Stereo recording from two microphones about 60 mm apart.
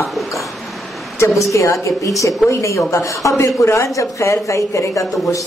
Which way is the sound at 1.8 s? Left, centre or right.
Left.